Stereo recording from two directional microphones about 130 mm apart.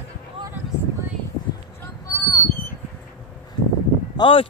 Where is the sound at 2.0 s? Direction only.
20° left (ahead or behind).